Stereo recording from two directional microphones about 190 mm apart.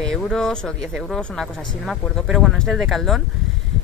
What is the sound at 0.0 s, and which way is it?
Speech, 5° left (ahead or behind).